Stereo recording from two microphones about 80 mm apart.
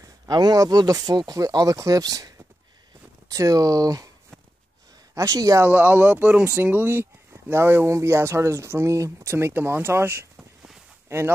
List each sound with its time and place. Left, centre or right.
0.3 s speech: right
5.1 s speech: right
5.7 s speech: right
10.3 s a sound: centre
11.1 s speech: right